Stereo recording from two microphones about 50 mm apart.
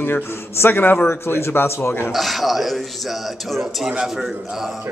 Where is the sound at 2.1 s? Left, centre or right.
Centre.